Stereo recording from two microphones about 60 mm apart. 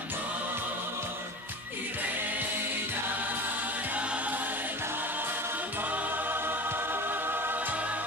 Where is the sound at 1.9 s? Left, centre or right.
Right.